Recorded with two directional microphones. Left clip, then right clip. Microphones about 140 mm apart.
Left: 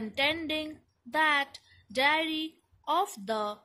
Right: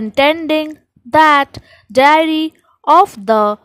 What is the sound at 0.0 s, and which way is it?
A woman's voice, 60° right (ahead or behind).